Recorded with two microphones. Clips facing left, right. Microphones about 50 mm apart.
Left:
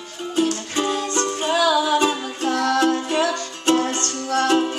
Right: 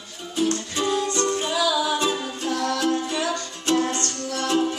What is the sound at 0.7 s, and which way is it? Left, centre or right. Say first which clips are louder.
Music: left 1 dB; left.